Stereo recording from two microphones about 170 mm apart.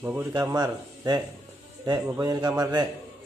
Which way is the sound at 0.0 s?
15° right (ahead or behind).